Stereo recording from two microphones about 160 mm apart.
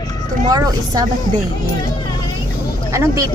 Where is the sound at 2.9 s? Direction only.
15° right (ahead or behind).